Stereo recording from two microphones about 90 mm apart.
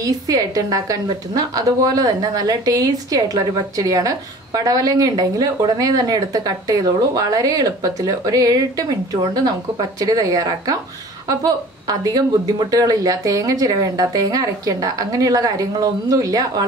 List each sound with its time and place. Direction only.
0.0 s a woman's voice: 40° right (ahead or behind)